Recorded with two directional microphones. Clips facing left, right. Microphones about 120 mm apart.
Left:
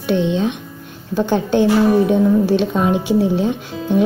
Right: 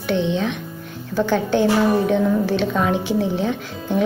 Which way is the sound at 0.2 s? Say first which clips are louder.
Left 3 dB; 15° left (ahead or behind).